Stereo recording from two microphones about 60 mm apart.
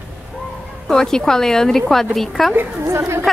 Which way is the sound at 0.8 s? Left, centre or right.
Centre.